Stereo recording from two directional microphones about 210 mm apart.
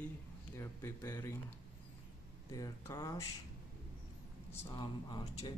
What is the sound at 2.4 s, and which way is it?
Speech, 15° left (ahead or behind).